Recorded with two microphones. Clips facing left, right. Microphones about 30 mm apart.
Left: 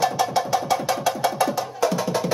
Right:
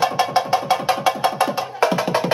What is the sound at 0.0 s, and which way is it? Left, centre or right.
Music, right.